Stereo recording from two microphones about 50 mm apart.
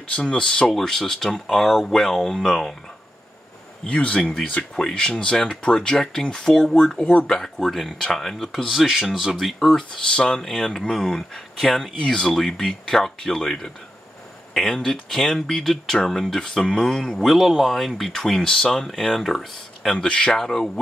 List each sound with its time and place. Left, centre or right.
0.1 s speech: centre
3.8 s speech: centre
17.2 s speech: centre
19.9 s speech: centre
20.3 s speech: centre